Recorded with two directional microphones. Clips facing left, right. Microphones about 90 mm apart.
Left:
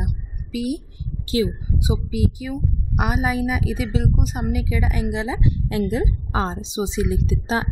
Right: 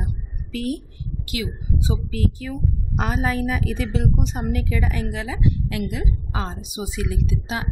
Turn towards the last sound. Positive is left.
turn(degrees=30)  # may be behind; listen again after turning